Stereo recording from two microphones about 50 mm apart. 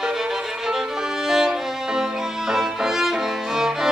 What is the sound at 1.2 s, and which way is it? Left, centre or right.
Violin, centre.